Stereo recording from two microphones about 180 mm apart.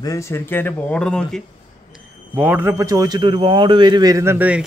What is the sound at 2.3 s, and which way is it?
A man's voice, 10° right (ahead or behind).